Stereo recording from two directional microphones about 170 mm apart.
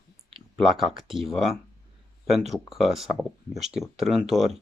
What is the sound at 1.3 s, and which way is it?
Speech, centre (ahead or behind).